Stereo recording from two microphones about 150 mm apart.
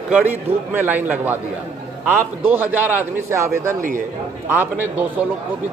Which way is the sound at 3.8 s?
60° right (ahead or behind).